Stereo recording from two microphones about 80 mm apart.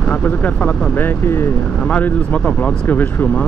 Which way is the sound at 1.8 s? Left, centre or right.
Centre.